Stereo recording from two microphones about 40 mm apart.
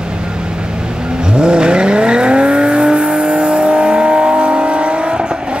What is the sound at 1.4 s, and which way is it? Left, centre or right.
Vehicle, right.